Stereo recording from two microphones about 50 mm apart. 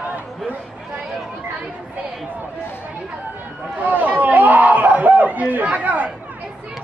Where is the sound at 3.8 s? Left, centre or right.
Right.